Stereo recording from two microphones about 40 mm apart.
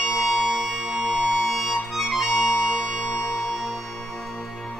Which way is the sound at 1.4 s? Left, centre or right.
Centre.